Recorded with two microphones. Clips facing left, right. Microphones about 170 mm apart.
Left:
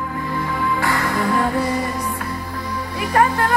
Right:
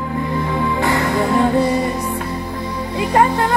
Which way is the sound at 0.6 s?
20° right (ahead or behind).